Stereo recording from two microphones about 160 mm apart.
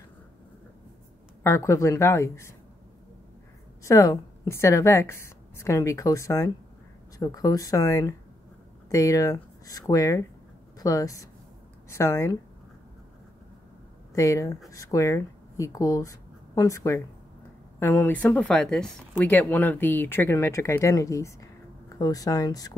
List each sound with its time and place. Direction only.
1.4 s speech: 20° left (ahead or behind)
3.8 s a woman's voice: 20° left (ahead or behind)
14.1 s speech: 20° left (ahead or behind)